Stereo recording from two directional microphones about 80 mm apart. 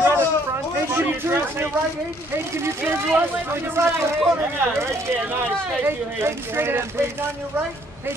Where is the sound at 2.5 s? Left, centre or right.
Right.